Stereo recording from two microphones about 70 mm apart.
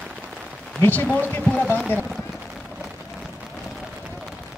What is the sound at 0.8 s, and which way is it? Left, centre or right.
Speech, left.